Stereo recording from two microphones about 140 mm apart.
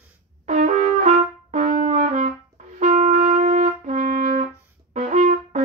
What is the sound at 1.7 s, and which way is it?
Brass instrument, 65° right (ahead or behind).